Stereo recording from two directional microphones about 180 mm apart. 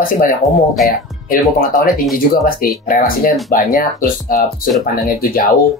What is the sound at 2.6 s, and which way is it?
Speech, 55° left (ahead or behind).